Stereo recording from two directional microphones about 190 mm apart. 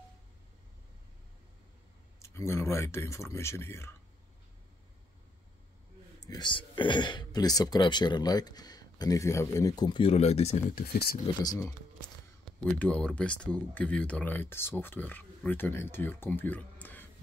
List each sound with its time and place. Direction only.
2.1 s speech: 15° left (ahead or behind)
6.1 s speech: 20° left (ahead or behind); by 10.6 s 35° left (ahead or behind)
10.7 s speech: 50° left (ahead or behind)
12.5 s speech: 5° left (ahead or behind)